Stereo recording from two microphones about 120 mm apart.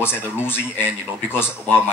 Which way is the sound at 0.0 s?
20° left (ahead or behind).